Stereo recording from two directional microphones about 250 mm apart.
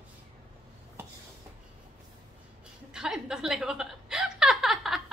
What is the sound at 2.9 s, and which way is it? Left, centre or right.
Chuckle, centre.